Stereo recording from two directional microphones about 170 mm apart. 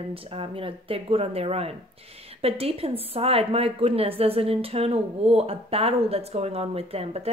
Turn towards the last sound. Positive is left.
turn(degrees=-35)  # may be behind; listen again after turning